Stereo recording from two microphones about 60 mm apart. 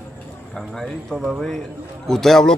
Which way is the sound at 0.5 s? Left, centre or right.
Centre.